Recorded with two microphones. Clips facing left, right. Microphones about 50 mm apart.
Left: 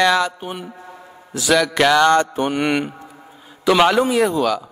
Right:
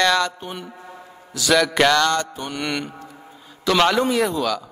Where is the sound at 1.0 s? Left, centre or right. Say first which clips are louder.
Left 2 dB; centre.